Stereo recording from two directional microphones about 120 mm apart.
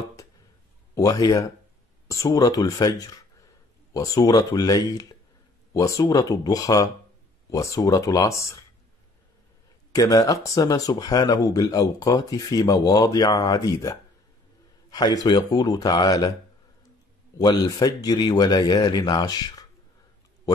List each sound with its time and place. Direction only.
0.9 s speech: 30° left (ahead or behind)
9.9 s speech: 30° left (ahead or behind)
17.4 s speech: 30° left (ahead or behind)